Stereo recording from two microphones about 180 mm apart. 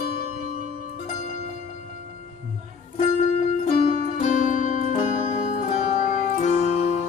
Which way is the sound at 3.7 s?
35° left (ahead or behind).